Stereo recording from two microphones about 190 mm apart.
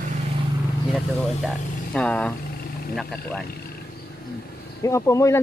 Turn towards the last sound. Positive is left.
turn(degrees=15)  # may be behind; listen again after turning